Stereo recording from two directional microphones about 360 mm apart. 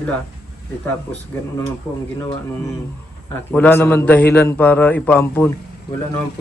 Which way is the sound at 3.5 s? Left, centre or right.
Centre.